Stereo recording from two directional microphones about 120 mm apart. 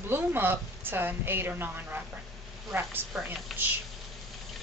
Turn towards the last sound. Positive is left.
turn(degrees=0)  # may be behind; listen again after turning